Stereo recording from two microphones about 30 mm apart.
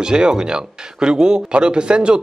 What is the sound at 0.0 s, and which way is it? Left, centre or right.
Speech, right.